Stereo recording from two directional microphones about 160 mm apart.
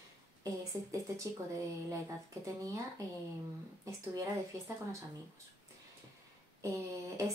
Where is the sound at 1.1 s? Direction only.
20° right (ahead or behind).